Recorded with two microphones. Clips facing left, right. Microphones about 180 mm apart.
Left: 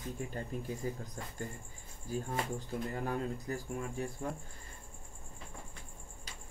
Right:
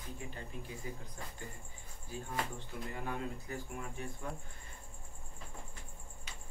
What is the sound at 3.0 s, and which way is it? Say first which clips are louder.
Speech: left 5 dB; 35° left (ahead or behind).